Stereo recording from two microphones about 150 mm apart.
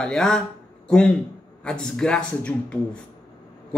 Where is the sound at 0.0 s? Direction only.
5° left (ahead or behind).